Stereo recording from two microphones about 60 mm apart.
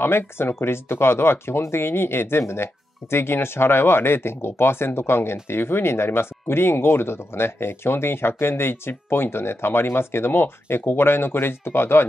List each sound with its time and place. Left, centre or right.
0.0 s speech: left